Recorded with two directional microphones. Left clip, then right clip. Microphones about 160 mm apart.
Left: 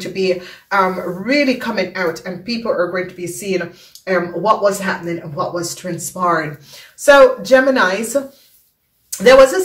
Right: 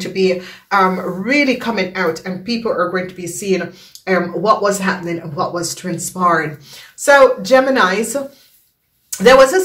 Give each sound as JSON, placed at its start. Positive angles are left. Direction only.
{"t": 0.0, "sound": "speech", "side_deg": -20}